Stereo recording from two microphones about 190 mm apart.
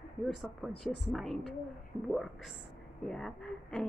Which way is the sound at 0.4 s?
Centre (ahead or behind).